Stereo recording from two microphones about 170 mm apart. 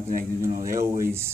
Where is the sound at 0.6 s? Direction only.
20° right (ahead or behind).